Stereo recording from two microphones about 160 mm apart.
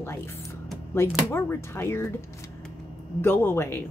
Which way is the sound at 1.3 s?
15° left (ahead or behind).